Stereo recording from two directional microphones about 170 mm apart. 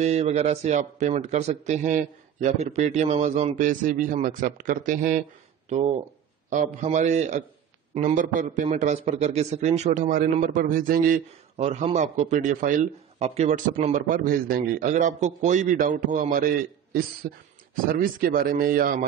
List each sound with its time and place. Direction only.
0.0 s a man's voice: 40° right (ahead or behind)
10.0 s a man's voice: 55° right (ahead or behind)
11.5 s speech: 40° right (ahead or behind)
13.9 s speech: 55° right (ahead or behind)
17.8 s a man's voice: 55° right (ahead or behind)